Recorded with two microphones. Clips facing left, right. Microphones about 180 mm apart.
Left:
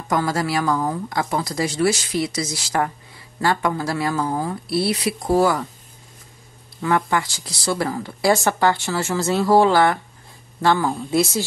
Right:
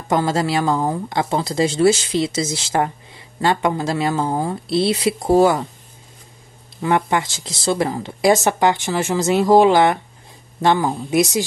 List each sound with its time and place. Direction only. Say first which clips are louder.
0.1 s speech: right 3 dB; 25° right (ahead or behind)
6.8 s speech: right 2 dB; 20° right (ahead or behind)